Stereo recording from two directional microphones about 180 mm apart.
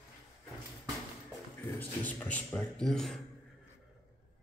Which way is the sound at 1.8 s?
10° left (ahead or behind).